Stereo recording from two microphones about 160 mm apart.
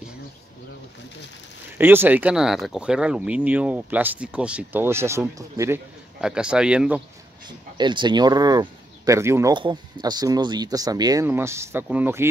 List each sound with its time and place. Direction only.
1.8 s speech: 15° right (ahead or behind)
7.4 s speech: 30° right (ahead or behind)
9.5 s speech: 30° right (ahead or behind); by 12.3 s 15° right (ahead or behind)